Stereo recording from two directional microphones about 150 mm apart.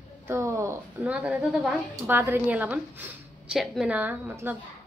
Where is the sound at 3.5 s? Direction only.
Centre (ahead or behind).